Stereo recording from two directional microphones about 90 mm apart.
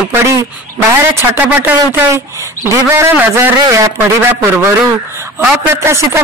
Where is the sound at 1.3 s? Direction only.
20° right (ahead or behind).